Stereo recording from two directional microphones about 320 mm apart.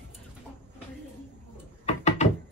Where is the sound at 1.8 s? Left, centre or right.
Left.